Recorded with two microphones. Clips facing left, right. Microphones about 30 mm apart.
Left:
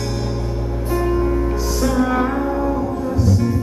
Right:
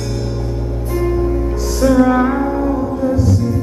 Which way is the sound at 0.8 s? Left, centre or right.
Centre.